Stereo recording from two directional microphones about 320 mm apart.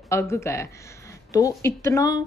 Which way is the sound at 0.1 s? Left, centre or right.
Centre.